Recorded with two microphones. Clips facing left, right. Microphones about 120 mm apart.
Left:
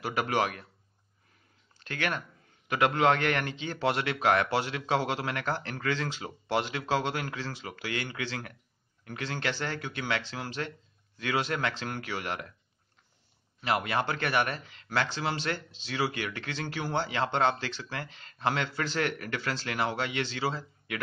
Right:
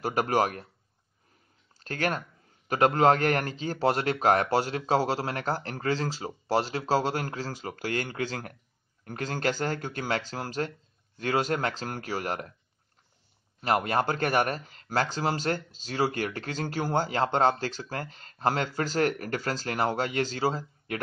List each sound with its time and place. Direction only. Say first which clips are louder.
0.0 s a man's voice: right 3 dB; 40° right (ahead or behind)
1.8 s speech: right 3 dB; 40° right (ahead or behind)
13.6 s speech: right 3 dB; 45° right (ahead or behind)